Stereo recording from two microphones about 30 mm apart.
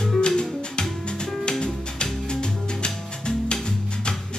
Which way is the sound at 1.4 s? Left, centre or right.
Left.